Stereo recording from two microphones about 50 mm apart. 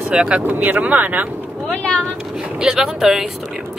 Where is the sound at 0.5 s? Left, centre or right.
Right.